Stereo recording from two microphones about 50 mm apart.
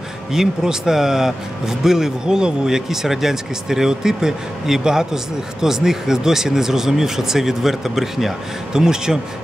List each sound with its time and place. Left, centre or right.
0.3 s speech: centre